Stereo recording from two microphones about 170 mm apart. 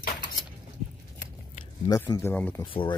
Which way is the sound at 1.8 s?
20° left (ahead or behind).